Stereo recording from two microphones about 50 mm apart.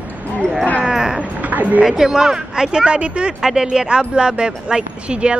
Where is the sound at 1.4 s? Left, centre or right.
Right.